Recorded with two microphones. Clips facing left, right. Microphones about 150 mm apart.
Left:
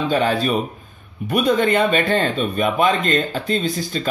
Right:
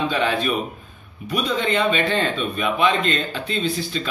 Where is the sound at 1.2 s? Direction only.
55° left (ahead or behind).